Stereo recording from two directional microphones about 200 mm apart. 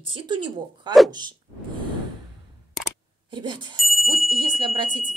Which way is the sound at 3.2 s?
25° right (ahead or behind).